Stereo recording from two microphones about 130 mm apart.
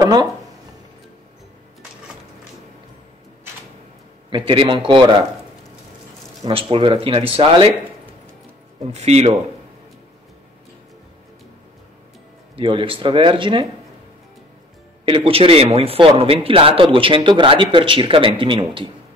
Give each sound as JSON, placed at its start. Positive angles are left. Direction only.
{"t": 0.0, "sound": "speech", "side_deg": -30}
{"t": 4.3, "sound": "speech", "side_deg": -45}
{"t": 6.4, "sound": "a man's voice", "side_deg": -45}
{"t": 8.9, "sound": "speech", "side_deg": -55}
{"t": 12.5, "sound": "speech", "side_deg": -40}
{"t": 15.0, "sound": "a man's voice", "side_deg": -45}